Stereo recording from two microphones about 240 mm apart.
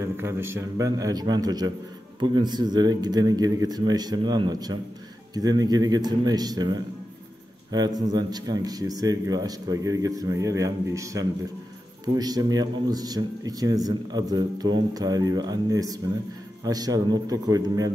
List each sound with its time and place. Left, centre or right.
0.2 s a man's voice: centre